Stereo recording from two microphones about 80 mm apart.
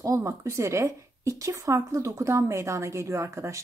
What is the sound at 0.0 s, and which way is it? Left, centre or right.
Speech, right.